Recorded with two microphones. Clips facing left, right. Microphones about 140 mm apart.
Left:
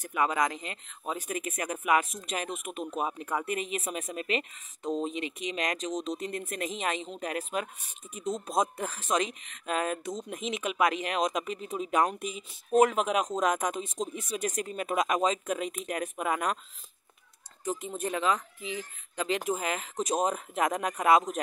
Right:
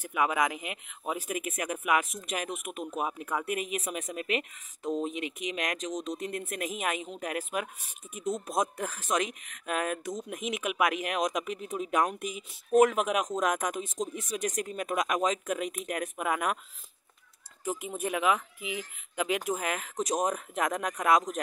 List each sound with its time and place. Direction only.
0.0 s speech: 5° right (ahead or behind)
17.6 s speech: 5° right (ahead or behind)